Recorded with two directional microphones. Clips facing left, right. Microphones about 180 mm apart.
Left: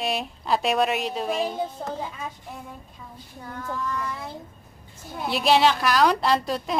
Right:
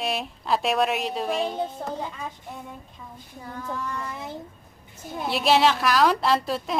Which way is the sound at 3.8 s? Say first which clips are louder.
Left 2 dB; 25° right (ahead or behind).